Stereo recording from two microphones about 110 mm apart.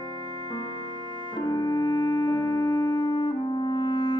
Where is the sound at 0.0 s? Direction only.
40° left (ahead or behind).